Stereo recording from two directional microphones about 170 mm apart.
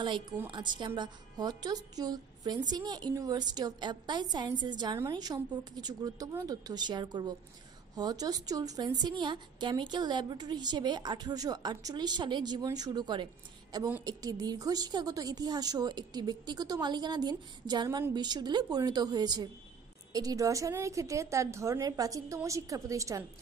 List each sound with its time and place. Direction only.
0.5 s a woman's voice: 25° right (ahead or behind)